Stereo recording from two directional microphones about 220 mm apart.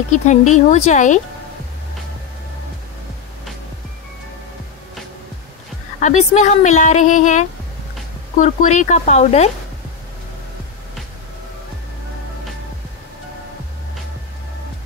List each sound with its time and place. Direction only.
0.1 s speech: 35° left (ahead or behind)
5.9 s speech: 35° left (ahead or behind)